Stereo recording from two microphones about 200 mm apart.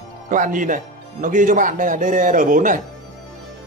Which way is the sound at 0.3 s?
40° right (ahead or behind).